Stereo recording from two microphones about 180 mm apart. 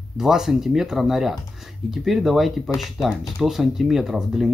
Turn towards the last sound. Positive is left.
turn(degrees=0)  # may be behind; listen again after turning